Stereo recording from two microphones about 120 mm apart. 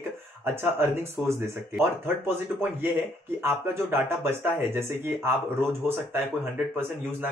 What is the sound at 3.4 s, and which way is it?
Speech, 20° right (ahead or behind).